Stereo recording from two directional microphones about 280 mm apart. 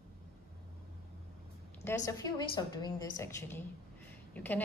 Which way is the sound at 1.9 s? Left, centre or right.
Centre.